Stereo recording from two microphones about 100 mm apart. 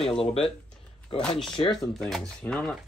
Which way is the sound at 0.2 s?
80° left.